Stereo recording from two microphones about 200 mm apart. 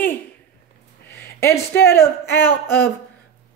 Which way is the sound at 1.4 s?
15° left (ahead or behind).